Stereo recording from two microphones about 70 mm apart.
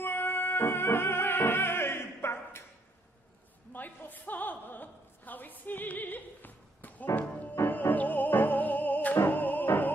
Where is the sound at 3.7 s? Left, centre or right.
Left.